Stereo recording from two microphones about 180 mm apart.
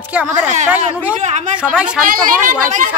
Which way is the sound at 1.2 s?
40° right (ahead or behind).